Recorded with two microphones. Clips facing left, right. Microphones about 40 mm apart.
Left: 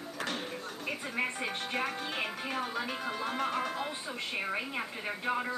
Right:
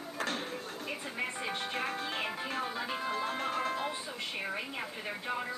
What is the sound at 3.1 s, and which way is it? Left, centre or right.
Music, centre.